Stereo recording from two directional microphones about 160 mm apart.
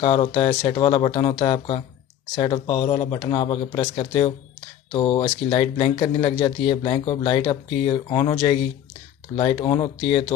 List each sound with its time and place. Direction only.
0.0 s speech: 35° left (ahead or behind)